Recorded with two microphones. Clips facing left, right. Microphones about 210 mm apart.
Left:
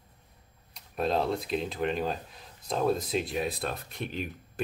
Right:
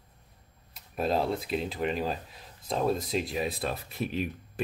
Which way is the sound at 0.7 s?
5° right (ahead or behind).